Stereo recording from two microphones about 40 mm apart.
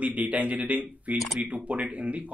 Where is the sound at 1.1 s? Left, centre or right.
Centre.